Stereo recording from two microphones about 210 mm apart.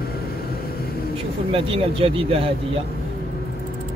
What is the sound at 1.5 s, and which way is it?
Speech, 25° right (ahead or behind).